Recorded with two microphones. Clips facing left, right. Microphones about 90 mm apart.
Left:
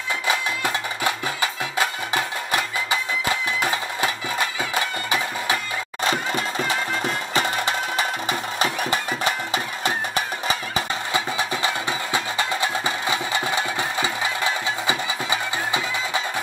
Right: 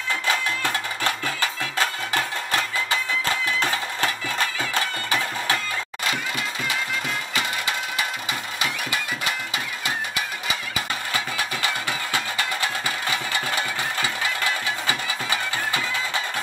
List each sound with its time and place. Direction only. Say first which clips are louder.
0.3 s music: left 1 dB; 15° left (ahead or behind)
6.0 s music: left 5 dB; 35° left (ahead or behind)
11.1 s music: left 5 dB; 25° left (ahead or behind)